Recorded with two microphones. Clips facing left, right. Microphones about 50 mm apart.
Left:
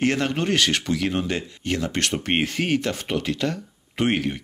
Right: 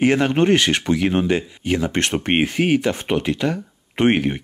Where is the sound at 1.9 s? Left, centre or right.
Right.